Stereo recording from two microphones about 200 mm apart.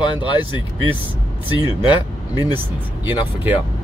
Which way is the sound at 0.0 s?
25° left (ahead or behind).